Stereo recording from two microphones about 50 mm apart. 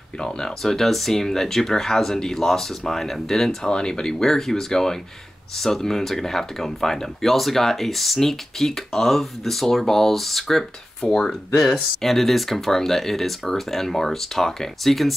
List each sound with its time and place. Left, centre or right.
0.6 s speech: centre
11.1 s speech: centre
11.6 s speech: centre